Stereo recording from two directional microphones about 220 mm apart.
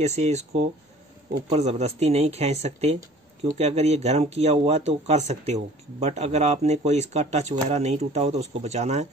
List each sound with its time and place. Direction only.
0.0 s speech: 30° right (ahead or behind)